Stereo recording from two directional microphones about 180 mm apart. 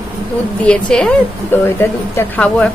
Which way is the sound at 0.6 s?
5° left (ahead or behind).